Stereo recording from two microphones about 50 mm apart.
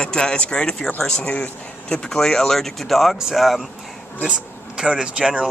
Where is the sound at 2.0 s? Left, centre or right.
Centre.